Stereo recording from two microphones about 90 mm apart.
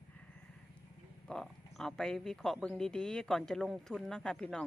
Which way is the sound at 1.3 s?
5° left (ahead or behind).